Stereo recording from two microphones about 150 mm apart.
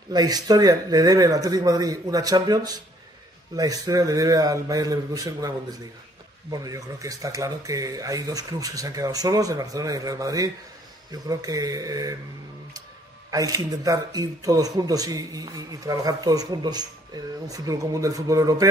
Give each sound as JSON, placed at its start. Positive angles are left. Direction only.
{"t": 0.1, "sound": "speech", "side_deg": -25}
{"t": 13.3, "sound": "speech", "side_deg": -25}